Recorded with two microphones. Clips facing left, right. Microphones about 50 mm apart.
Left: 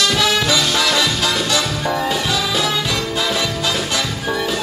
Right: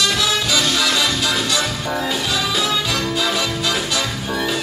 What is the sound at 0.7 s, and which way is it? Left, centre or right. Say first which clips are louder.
Music: left 1 dB; left.